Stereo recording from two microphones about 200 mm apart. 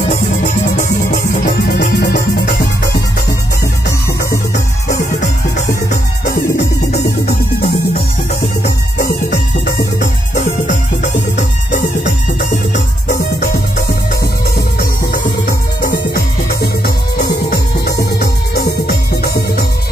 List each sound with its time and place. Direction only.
0.4 s music: 40° left (ahead or behind)
6.5 s music: 45° left (ahead or behind)
13.1 s music: 40° left (ahead or behind)
15.4 s music: 45° left (ahead or behind)
16.8 s music: 55° left (ahead or behind)